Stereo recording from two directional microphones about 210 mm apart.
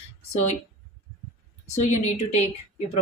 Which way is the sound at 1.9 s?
35° left (ahead or behind).